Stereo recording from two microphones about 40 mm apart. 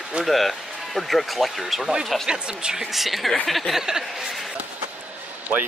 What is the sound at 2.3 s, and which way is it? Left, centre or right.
Speech, right.